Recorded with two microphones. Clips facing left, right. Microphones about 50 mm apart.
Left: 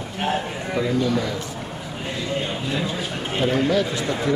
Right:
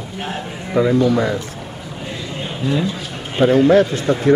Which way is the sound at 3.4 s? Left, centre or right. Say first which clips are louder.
Right 9 dB; right.